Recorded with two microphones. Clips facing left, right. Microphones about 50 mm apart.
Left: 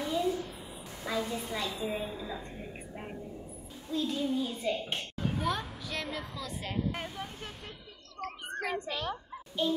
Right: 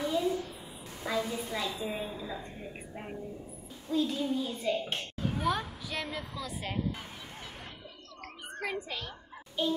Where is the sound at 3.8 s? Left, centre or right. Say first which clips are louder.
Right 2 dB; centre.